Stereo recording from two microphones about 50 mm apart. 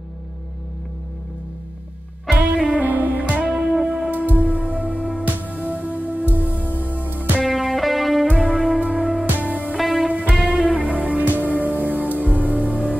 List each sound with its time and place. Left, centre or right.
2.3 s music: right
7.4 s music: centre
8.5 s music: right
9.8 s music: centre
10.1 s music: right